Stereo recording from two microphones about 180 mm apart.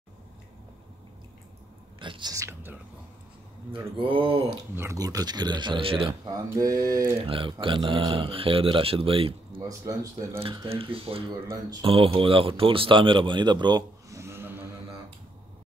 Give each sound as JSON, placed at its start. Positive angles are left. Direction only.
{"t": 2.0, "sound": "speech", "side_deg": -25}
{"t": 4.0, "sound": "speech", "side_deg": -30}
{"t": 4.7, "sound": "speech", "side_deg": -15}
{"t": 7.2, "sound": "speech", "side_deg": -30}
{"t": 9.6, "sound": "speech", "side_deg": -20}